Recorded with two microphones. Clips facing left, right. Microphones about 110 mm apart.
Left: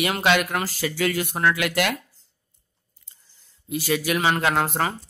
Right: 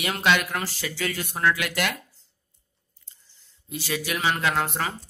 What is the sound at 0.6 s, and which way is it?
Speech, 45° left (ahead or behind).